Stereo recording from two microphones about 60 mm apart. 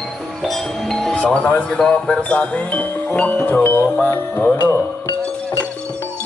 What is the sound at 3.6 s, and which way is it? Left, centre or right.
Music, left.